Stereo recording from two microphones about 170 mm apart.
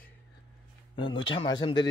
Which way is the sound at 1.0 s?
30° left (ahead or behind).